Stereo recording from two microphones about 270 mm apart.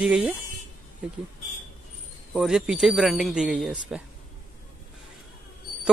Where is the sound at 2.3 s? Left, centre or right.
Centre.